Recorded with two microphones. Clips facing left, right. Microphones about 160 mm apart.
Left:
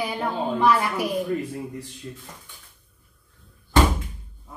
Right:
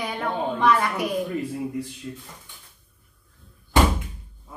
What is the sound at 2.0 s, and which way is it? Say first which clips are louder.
Speech: right 2 dB; 20° left (ahead or behind).